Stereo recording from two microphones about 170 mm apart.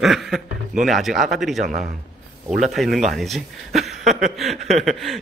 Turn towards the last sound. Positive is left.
turn(degrees=0)  # may be behind; listen again after turning